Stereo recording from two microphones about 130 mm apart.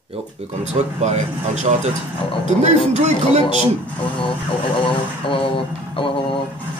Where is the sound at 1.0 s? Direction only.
65° right (ahead or behind).